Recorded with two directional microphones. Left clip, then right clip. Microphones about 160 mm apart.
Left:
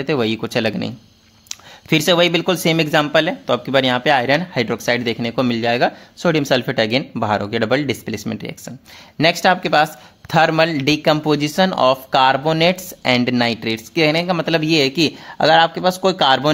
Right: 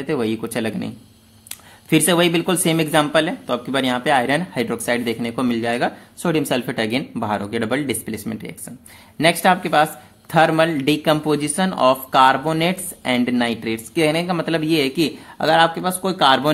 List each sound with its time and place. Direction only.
0.0 s speech: 40° left (ahead or behind)
13.9 s speech: 25° left (ahead or behind); by 16.5 s 45° left (ahead or behind)